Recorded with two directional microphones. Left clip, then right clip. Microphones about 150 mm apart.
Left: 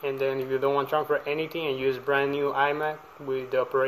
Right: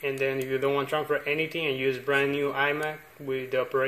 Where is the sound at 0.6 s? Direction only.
25° right (ahead or behind).